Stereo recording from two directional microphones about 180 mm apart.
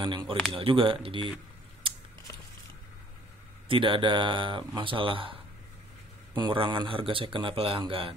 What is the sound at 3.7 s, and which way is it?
Speech, 30° right (ahead or behind).